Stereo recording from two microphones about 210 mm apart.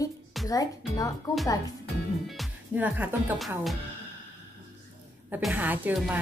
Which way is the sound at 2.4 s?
10° right (ahead or behind).